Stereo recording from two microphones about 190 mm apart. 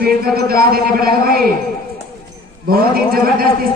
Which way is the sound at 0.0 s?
55° right (ahead or behind).